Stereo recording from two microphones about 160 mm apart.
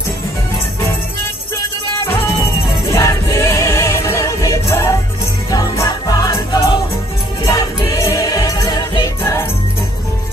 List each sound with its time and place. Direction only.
2.9 s music: 15° left (ahead or behind)
9.2 s jingle bell: 15° left (ahead or behind)